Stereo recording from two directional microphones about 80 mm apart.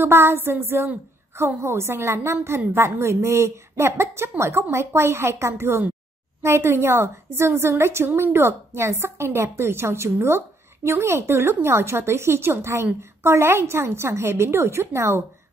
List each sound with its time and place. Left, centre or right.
0.0 s a woman's voice: right